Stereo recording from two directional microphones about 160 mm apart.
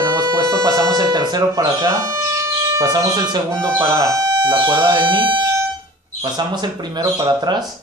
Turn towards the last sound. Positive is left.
turn(degrees=-25)  # may be behind; listen again after turning